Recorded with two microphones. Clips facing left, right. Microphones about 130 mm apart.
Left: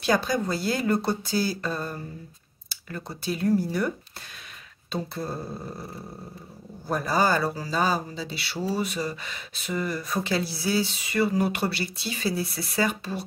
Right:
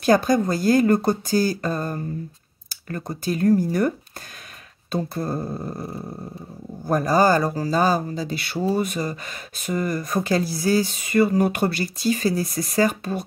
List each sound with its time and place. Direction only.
0.0 s speech: 45° right (ahead or behind)
4.9 s speech: 45° right (ahead or behind)
6.9 s speech: 45° right (ahead or behind)